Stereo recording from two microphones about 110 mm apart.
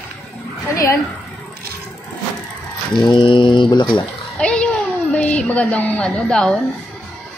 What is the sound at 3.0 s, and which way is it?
Speech, 50° left (ahead or behind).